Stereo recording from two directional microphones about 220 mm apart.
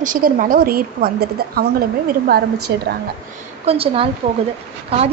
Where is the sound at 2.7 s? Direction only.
50° right (ahead or behind).